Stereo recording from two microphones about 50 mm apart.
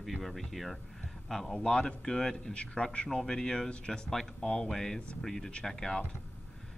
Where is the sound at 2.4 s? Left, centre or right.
Left.